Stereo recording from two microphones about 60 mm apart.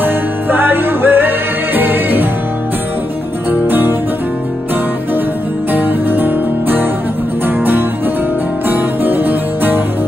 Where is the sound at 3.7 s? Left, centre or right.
Right.